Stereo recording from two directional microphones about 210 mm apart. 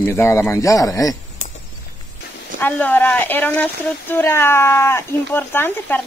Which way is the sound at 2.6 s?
10° left (ahead or behind).